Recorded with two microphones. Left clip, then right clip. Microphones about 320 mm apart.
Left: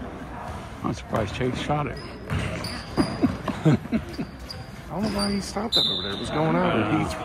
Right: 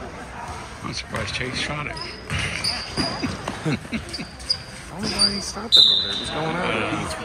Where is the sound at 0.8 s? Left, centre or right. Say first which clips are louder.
Left 2 dB; centre.